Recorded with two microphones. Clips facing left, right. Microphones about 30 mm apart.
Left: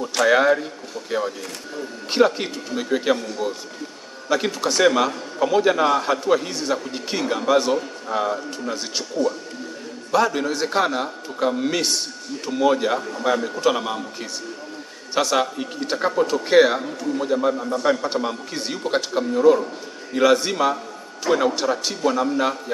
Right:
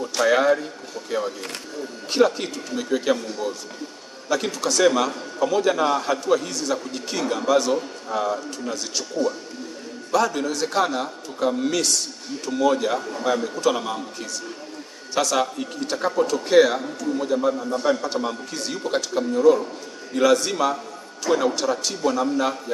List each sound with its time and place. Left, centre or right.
0.3 s a man's voice: centre